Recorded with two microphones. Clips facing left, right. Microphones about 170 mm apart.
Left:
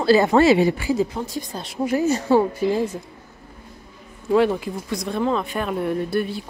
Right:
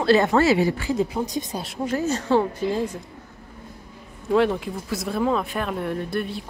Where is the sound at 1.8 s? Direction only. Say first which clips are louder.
Left 4 dB; 10° left (ahead or behind).